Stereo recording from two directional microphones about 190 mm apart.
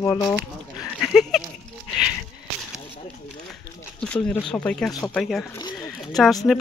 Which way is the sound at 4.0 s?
5° left (ahead or behind).